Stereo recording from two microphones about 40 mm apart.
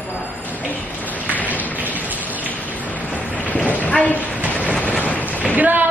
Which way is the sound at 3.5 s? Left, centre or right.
Left.